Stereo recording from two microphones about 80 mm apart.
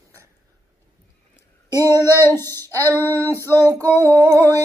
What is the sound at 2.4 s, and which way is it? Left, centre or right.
Female singing, right.